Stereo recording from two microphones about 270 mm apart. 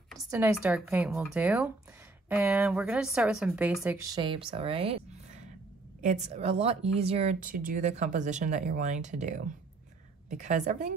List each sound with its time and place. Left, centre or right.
0.3 s speech: centre; by 10.9 s right